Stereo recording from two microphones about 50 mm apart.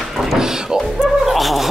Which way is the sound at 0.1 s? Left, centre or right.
Centre.